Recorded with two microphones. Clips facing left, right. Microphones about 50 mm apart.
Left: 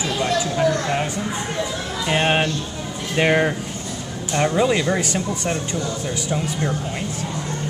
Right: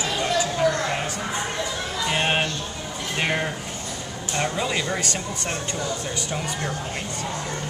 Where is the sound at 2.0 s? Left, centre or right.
Centre.